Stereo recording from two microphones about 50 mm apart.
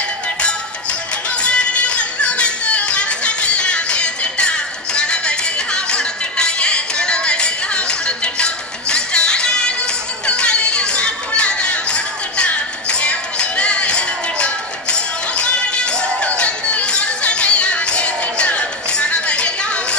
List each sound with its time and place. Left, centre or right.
1.4 s music: left
10.2 s chatter: centre
16.3 s music: left